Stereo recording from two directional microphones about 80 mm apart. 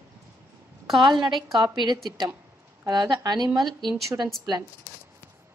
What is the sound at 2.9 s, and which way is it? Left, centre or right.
Speech, right.